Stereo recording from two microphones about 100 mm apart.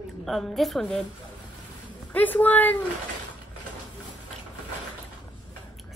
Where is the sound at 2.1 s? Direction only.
15° left (ahead or behind).